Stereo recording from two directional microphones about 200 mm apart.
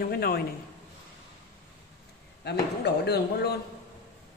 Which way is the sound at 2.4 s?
55° left (ahead or behind).